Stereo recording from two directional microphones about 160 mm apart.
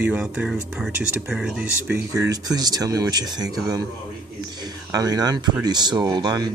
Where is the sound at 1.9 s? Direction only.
20° right (ahead or behind).